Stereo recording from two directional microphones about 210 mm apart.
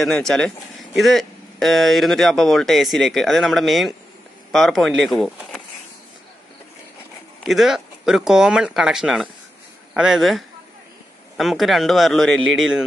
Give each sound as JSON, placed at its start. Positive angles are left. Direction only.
{"t": 0.0, "sound": "speech", "side_deg": 0}
{"t": 7.4, "sound": "speech", "side_deg": 0}